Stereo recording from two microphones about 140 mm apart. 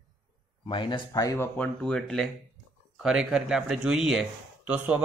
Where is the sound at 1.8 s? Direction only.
5° left (ahead or behind).